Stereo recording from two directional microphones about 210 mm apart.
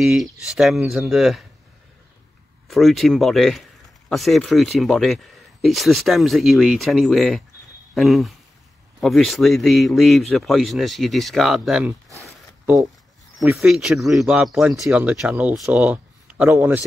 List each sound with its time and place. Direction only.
0.0 s speech: centre (ahead or behind)
2.7 s speech: centre (ahead or behind)
12.1 s zipper: 15° right (ahead or behind)
13.4 s speech: centre (ahead or behind)